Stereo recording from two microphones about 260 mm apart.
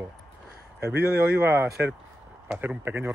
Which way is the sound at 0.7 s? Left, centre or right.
Right.